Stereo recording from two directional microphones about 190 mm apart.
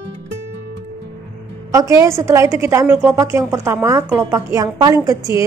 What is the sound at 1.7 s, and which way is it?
A woman's voice, 15° right (ahead or behind).